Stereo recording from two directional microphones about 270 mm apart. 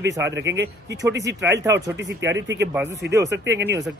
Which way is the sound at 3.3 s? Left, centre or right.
Right.